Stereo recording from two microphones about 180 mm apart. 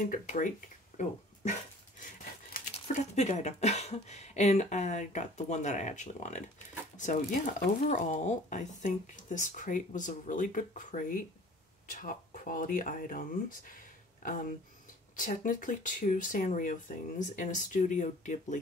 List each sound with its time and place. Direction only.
0.0 s speech: 45° left (ahead or behind)